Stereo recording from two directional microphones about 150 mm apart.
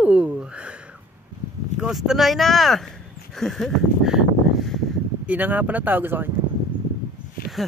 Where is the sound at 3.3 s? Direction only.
Centre (ahead or behind).